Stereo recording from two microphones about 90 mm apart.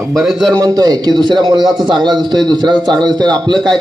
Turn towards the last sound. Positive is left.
turn(degrees=-55)  # may be behind; listen again after turning